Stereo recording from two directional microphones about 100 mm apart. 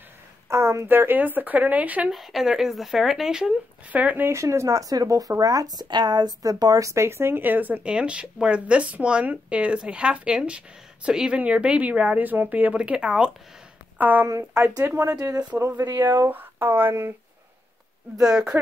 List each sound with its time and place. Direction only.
0.5 s a woman's voice: 30° right (ahead or behind)
2.1 s speech: centre (ahead or behind)
4.3 s a woman's voice: 30° right (ahead or behind)
14.3 s speech: 30° right (ahead or behind)
15.0 s a woman's voice: 20° right (ahead or behind)
18.2 s a woman's voice: 10° right (ahead or behind)